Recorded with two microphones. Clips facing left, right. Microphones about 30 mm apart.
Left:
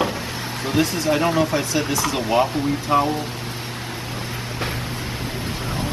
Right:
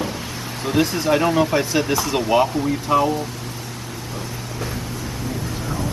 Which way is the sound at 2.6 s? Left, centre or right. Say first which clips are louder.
Right 1 dB; centre.